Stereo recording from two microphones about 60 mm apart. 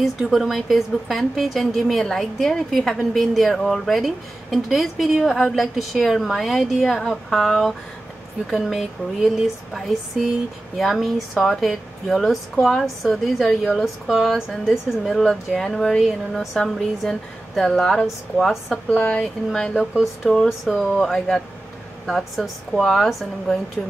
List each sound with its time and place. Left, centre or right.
0.0 s a woman's voice: centre
10.8 s a woman's voice: centre
18.0 s a woman's voice: centre
18.9 s speech: left
19.9 s a woman's voice: centre
20.7 s a woman's voice: centre